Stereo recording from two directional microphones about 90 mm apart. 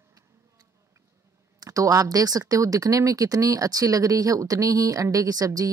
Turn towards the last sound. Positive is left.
turn(degrees=-45)  # may be behind; listen again after turning